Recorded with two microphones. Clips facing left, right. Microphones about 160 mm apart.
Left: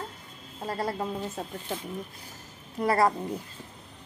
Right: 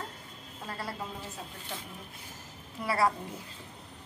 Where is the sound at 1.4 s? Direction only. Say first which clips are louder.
Left 7 dB; 50° left (ahead or behind).